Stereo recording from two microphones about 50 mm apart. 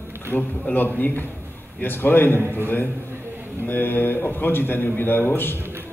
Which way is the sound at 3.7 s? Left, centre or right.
Left.